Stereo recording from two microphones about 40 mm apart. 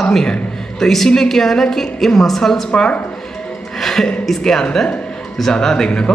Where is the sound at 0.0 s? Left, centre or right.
Centre.